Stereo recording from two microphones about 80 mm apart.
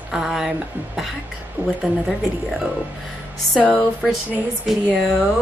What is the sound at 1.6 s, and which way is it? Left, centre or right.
Speech, centre.